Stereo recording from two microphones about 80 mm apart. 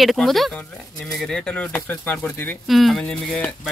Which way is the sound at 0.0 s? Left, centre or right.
Centre.